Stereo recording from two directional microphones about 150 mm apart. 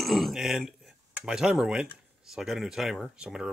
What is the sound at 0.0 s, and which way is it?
Speech, centre (ahead or behind).